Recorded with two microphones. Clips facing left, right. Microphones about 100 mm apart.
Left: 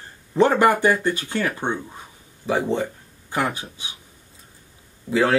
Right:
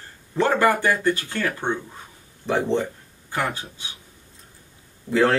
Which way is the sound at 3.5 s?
15° left (ahead or behind).